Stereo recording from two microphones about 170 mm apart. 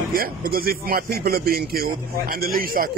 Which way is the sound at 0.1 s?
60° right (ahead or behind).